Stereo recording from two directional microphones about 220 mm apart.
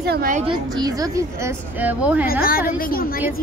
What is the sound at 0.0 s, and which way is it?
Speech, 45° right (ahead or behind).